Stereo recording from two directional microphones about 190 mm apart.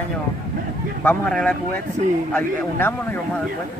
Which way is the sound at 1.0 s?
5° left (ahead or behind).